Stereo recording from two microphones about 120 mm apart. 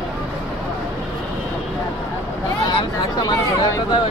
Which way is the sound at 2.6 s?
35° left (ahead or behind).